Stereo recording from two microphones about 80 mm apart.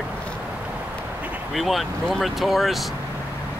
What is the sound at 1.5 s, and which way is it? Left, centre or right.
Speech, centre.